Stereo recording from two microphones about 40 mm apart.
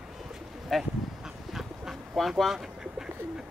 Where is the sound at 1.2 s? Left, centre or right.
Centre.